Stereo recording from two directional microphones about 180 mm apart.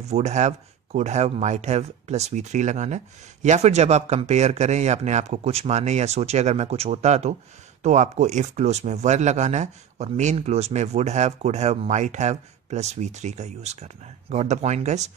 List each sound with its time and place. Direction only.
0.1 s speech: 40° right (ahead or behind)